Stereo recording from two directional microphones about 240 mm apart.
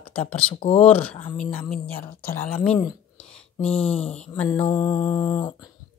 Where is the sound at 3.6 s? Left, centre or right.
Left.